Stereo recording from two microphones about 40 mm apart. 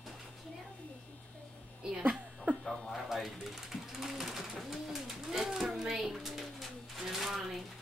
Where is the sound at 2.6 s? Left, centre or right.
Centre.